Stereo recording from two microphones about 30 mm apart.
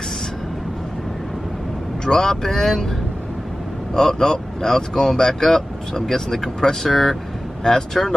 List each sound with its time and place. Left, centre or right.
2.0 s speech: centre
3.9 s speech: centre
6.9 s speech: centre
7.6 s speech: centre